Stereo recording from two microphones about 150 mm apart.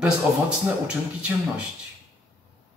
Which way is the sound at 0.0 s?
5° right (ahead or behind).